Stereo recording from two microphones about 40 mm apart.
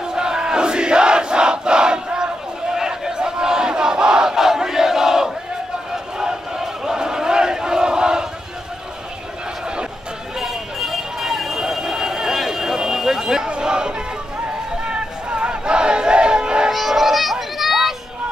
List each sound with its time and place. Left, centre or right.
0.1 s crowd: centre
10.4 s vehicle: centre
13.5 s music: right
14.9 s battle cry: right
16.7 s music: centre